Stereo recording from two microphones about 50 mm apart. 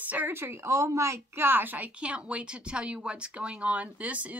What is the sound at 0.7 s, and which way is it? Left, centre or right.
Speech, right.